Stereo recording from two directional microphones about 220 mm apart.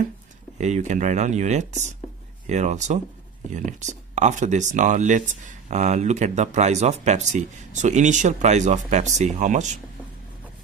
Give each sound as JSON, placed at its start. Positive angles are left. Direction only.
{"t": 0.6, "sound": "speech", "side_deg": -30}